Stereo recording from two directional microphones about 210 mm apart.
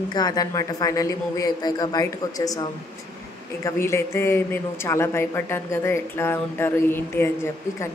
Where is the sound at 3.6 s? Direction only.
15° left (ahead or behind).